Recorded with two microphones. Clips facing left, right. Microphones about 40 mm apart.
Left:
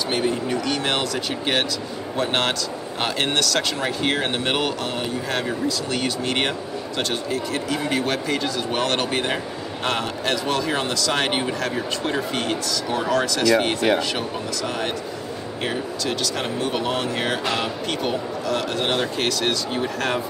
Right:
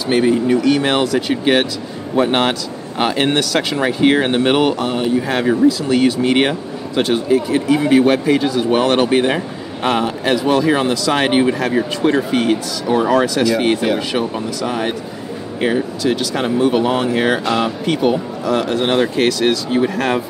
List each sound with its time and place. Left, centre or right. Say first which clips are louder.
0.1 s speech: right 11 dB; centre